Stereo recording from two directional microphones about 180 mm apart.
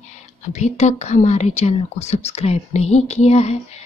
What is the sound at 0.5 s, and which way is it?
Speech, 40° left (ahead or behind).